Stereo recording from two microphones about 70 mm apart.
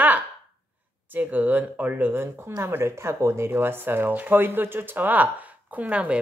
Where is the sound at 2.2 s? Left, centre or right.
Right.